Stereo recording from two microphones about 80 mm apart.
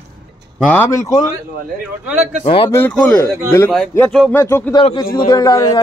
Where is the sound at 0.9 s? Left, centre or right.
Left.